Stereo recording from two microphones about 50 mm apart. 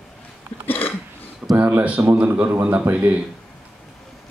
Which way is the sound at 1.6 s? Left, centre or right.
Right.